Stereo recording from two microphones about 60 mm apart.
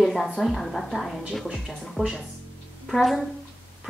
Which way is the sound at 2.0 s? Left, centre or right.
Right.